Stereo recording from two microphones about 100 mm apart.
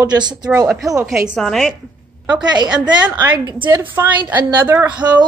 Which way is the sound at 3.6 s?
20° right (ahead or behind).